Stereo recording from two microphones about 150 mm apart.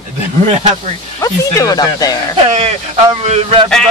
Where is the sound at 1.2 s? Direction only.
20° left (ahead or behind).